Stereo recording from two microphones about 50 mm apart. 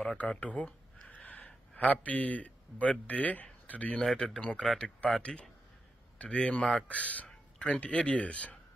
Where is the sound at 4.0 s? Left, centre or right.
Centre.